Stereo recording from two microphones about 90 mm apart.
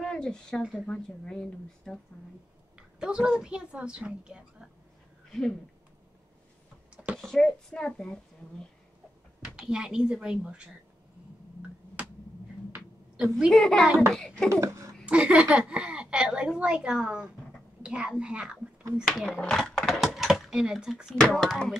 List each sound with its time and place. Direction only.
0.0 s speech: 10° left (ahead or behind)
3.0 s a woman's voice: 10° right (ahead or behind)
7.2 s speech: 5° left (ahead or behind)
9.4 s a woman's voice: 10° right (ahead or behind)
12.7 s a sound: 10° right (ahead or behind)
13.5 s speech: 5° left (ahead or behind)
14.5 s speech: 35° right (ahead or behind)
15.0 s a woman's voice: 10° right (ahead or behind)
19.0 s speech: 5° left (ahead or behind)
19.3 s a sound: 10° left (ahead or behind)
21.3 s speech: 5° left (ahead or behind)